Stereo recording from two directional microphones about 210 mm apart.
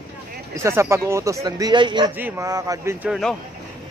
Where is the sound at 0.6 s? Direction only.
15° right (ahead or behind).